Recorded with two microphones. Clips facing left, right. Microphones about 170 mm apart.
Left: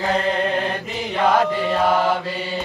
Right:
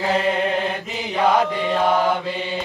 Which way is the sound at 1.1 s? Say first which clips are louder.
Even; centre (ahead or behind).